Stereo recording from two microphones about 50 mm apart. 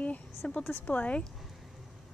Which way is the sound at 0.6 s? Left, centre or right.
Left.